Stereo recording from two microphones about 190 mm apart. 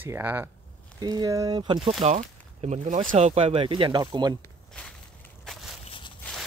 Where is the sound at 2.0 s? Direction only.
35° right (ahead or behind); by 4.3 s 20° right (ahead or behind).